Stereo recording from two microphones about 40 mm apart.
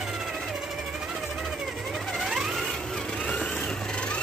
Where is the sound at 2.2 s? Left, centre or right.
Centre.